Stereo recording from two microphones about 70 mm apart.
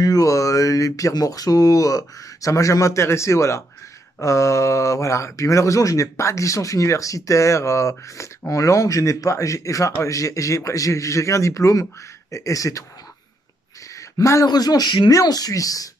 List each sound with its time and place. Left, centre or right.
0.0 s speech: left
14.1 s speech: left
14.4 s speech: left
15.1 s speech: left